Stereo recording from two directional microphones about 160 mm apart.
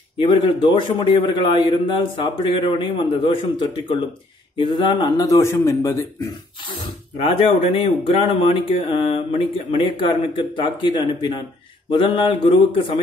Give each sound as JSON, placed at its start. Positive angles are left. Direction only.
{"t": 0.2, "sound": "speech", "side_deg": 30}
{"t": 7.2, "sound": "speech", "side_deg": 35}